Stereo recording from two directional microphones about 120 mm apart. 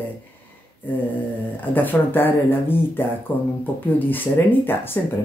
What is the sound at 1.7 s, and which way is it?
Speech, 15° left (ahead or behind).